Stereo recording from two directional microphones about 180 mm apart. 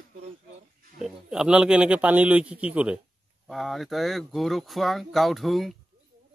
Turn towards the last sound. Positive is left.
turn(degrees=0)  # may be behind; listen again after turning